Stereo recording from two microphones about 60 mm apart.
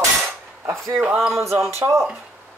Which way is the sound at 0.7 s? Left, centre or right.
Right.